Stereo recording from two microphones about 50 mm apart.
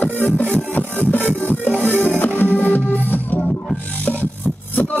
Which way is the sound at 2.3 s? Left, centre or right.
Left.